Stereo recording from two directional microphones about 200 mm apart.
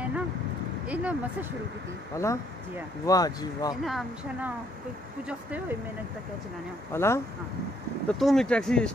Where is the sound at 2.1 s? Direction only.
15° left (ahead or behind).